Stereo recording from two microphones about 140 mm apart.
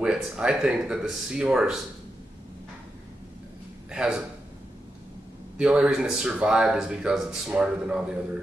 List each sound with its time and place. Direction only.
0.0 s speech: 5° right (ahead or behind)
3.9 s a man's voice: 5° right (ahead or behind)
5.6 s speech: 5° right (ahead or behind)